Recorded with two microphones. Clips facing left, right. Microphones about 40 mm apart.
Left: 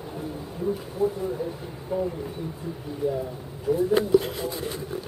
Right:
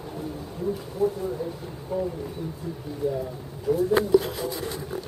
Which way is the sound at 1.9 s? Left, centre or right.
Centre.